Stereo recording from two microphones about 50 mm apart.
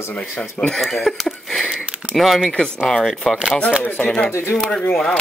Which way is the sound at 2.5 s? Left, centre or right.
Centre.